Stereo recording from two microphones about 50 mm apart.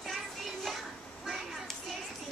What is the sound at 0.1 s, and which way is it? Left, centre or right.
Child singing, centre.